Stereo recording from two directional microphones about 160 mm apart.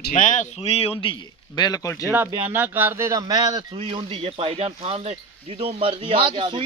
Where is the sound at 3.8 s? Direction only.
35° right (ahead or behind).